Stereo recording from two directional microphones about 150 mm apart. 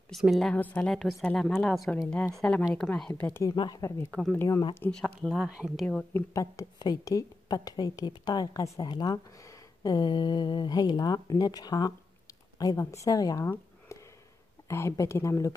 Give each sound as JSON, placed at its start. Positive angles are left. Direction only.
{"t": 0.1, "sound": "a woman's voice", "side_deg": 0}
{"t": 4.1, "sound": "a woman's voice", "side_deg": 5}
{"t": 4.5, "sound": "a woman's voice", "side_deg": 25}
{"t": 4.8, "sound": "speech", "side_deg": 5}
{"t": 5.9, "sound": "a woman's voice", "side_deg": 10}
{"t": 6.3, "sound": "a woman's voice", "side_deg": 20}
{"t": 14.7, "sound": "a woman's voice", "side_deg": 20}